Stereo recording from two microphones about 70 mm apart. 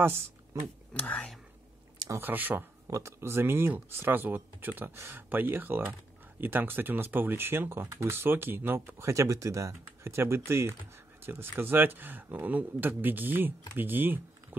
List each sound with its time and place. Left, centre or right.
0.0 s speech: right
0.9 s speech: centre
2.2 s speech: right
2.9 s speech: right